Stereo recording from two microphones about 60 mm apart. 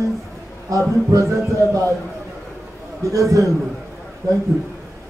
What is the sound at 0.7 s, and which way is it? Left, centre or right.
Speech, right.